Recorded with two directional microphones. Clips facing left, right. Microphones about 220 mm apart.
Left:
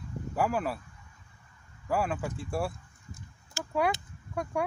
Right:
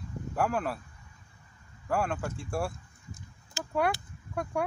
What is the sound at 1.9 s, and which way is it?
Speech, 5° left (ahead or behind).